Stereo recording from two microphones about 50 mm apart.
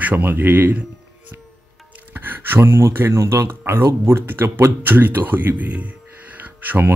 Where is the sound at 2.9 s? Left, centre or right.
Right.